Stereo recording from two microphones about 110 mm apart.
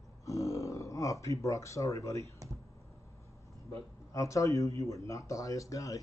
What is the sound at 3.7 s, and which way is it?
Speech, 30° left (ahead or behind).